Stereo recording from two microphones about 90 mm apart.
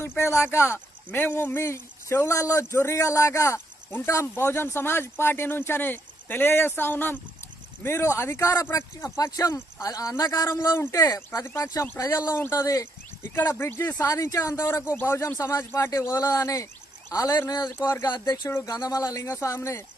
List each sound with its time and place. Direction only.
0.0 s speech: 25° left (ahead or behind)